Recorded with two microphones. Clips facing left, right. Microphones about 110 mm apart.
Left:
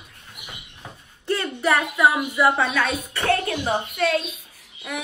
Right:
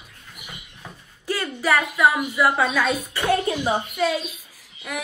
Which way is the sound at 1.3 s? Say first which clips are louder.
Left 1 dB; 5° right (ahead or behind).